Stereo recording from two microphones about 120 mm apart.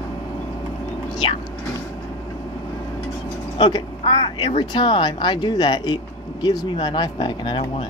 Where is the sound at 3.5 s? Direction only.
40° left (ahead or behind).